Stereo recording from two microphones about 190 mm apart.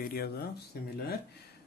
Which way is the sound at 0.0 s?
55° left (ahead or behind).